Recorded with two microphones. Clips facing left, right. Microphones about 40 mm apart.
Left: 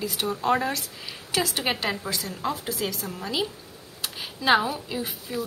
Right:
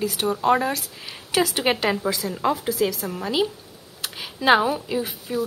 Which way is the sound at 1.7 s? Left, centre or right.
Right.